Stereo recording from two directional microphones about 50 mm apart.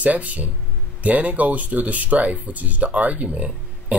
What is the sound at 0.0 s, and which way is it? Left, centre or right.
Speech, right.